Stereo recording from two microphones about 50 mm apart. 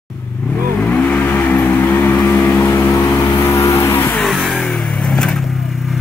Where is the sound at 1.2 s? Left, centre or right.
Left.